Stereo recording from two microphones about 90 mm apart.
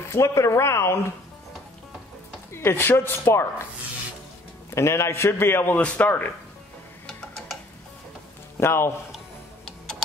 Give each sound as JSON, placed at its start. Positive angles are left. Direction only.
{"t": 0.1, "sound": "a man's voice", "side_deg": 35}
{"t": 2.5, "sound": "speech", "side_deg": 25}
{"t": 4.6, "sound": "a man's voice", "side_deg": 30}
{"t": 5.8, "sound": "a man's voice", "side_deg": 15}
{"t": 7.1, "sound": "a sound", "side_deg": 10}
{"t": 8.5, "sound": "speech", "side_deg": 30}